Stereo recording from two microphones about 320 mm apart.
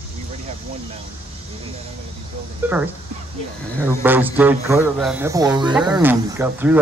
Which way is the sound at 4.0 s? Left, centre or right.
Centre.